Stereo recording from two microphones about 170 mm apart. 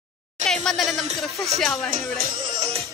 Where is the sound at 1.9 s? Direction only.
55° right (ahead or behind).